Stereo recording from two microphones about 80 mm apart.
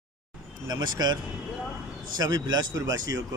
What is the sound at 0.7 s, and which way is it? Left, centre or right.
Speech, right.